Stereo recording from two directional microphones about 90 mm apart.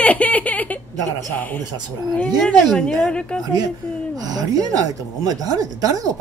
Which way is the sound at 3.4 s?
45° right (ahead or behind).